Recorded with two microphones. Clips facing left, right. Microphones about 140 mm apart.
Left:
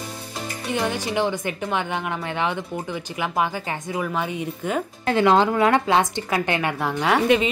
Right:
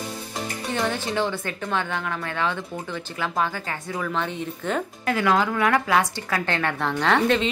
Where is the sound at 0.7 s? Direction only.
15° left (ahead or behind).